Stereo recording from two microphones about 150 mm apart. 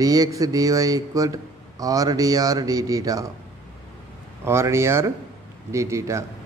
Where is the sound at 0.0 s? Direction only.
25° right (ahead or behind).